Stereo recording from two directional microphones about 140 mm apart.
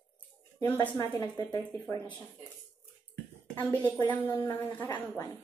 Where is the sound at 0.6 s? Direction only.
15° left (ahead or behind).